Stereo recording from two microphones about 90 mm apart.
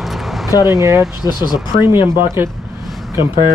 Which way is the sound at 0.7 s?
35° right (ahead or behind).